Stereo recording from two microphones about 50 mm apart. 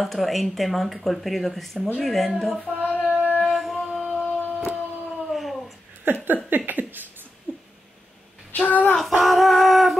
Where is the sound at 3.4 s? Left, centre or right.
Centre.